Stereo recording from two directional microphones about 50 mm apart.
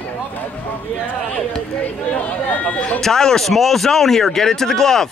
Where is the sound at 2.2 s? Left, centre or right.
Left.